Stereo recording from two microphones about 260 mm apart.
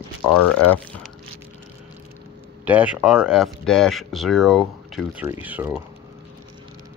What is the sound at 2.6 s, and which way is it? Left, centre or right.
Speech, centre.